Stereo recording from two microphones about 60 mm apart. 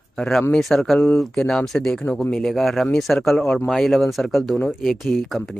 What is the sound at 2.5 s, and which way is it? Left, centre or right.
Speech, centre.